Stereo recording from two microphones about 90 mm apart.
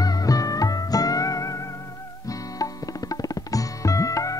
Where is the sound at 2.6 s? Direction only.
40° left (ahead or behind).